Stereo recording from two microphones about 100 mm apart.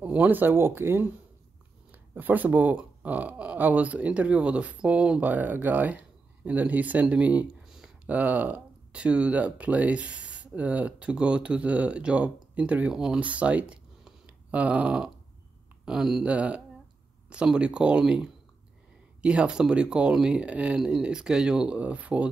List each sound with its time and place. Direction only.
0.0 s speech: 15° right (ahead or behind)